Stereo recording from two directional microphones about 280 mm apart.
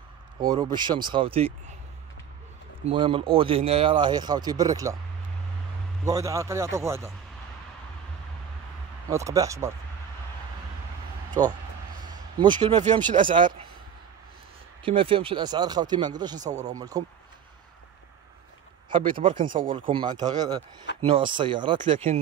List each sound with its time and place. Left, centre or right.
0.4 s speech: centre
2.9 s speech: centre
6.0 s speech: centre
9.1 s speech: centre
12.4 s speech: centre
14.9 s speech: centre
16.7 s speech: centre
18.9 s speech: centre